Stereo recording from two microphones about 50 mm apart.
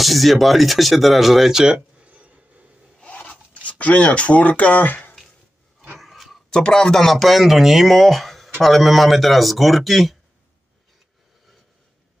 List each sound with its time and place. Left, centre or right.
0.0 s speech: centre
2.0 s a sound: right
3.1 s zipper: left
4.7 s speech: left
5.9 s a sound: centre
6.5 s speech: centre